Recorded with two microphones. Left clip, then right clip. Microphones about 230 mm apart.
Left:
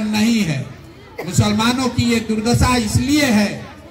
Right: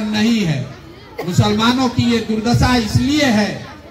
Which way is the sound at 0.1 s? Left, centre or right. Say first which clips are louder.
Right 1 dB; left.